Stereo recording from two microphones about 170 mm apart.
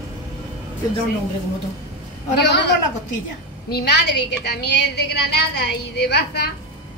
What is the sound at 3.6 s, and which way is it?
Speech, 70° left (ahead or behind).